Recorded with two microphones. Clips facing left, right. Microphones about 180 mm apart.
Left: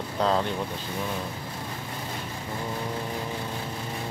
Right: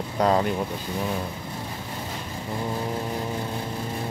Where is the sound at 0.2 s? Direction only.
10° right (ahead or behind).